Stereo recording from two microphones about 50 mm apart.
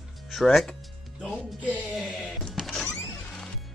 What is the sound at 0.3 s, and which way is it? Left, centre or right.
Speech, centre.